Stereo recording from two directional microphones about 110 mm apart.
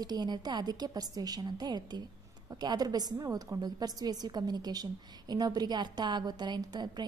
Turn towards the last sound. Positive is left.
turn(degrees=-40)  # may be behind; listen again after turning